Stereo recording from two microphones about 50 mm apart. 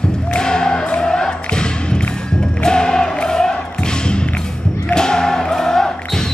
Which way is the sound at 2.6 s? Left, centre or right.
Centre.